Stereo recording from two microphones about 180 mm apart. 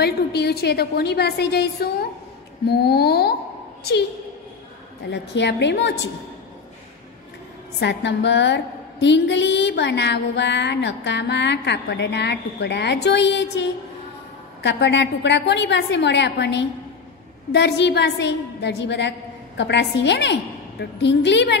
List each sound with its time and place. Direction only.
0.0 s a woman's voice: 65° left (ahead or behind)
5.1 s a woman's voice: 75° left (ahead or behind)
7.8 s a woman's voice: 75° left (ahead or behind)